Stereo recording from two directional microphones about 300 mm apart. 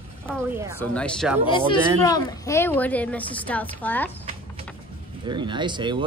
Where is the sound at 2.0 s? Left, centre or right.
Centre.